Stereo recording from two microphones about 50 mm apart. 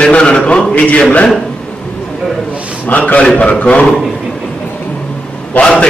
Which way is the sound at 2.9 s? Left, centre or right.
Left.